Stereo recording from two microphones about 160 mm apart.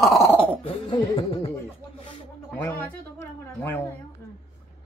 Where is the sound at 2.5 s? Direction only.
10° left (ahead or behind).